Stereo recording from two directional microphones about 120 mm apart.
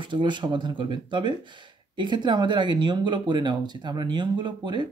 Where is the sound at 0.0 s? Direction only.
40° right (ahead or behind).